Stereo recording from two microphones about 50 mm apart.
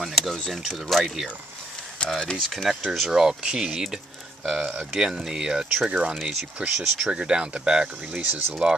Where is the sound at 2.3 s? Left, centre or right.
Centre; by 6.7 s right.